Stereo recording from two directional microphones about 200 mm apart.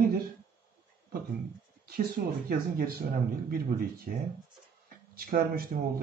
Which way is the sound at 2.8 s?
50° right (ahead or behind).